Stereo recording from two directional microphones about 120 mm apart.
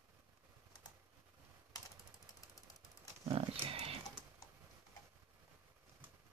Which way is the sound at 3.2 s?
55° right (ahead or behind).